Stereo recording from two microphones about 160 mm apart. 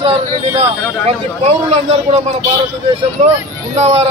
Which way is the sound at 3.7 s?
45° right (ahead or behind).